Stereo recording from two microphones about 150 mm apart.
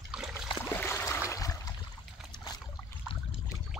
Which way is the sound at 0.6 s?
15° left (ahead or behind).